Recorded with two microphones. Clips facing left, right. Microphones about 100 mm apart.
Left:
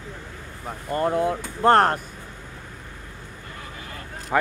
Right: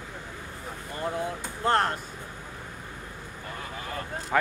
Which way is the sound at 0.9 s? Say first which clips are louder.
Left 9 dB; 55° left (ahead or behind).